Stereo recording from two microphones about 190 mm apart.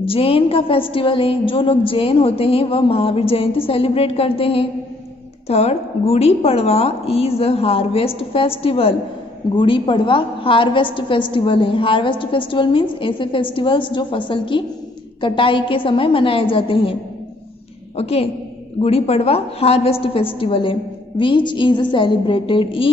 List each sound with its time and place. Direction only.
0.0 s a woman's voice: 30° left (ahead or behind)
17.9 s a woman's voice: 30° left (ahead or behind)